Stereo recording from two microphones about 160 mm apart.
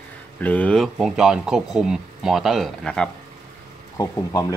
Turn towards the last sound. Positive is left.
turn(degrees=20)  # may be behind; listen again after turning